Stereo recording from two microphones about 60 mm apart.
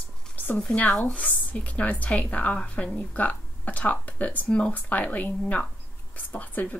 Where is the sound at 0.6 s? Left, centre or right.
Centre.